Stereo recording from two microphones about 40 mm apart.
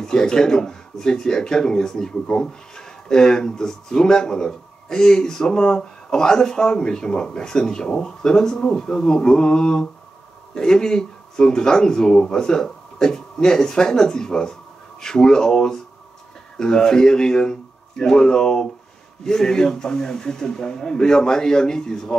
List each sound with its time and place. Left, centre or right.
0.0 s speech: centre